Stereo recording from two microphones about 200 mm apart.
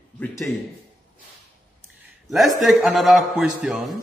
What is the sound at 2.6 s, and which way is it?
A man's voice, centre (ahead or behind).